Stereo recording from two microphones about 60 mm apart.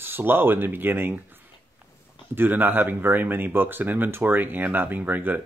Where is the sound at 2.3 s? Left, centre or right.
Right.